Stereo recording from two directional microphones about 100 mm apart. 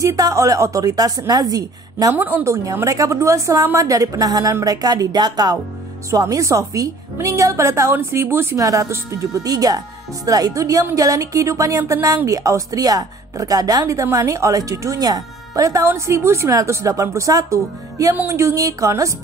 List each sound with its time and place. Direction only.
0.0 s a woman's voice: 35° right (ahead or behind)
2.1 s a woman's voice: 20° right (ahead or behind)
2.5 s a woman's voice: 30° right (ahead or behind)